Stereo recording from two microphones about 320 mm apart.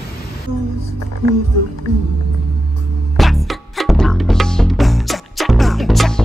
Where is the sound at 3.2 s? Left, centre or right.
Centre.